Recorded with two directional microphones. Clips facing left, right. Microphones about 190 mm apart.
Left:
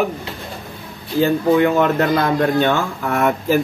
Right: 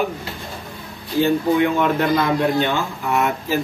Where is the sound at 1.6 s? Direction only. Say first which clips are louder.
Left 3 dB; 45° left (ahead or behind).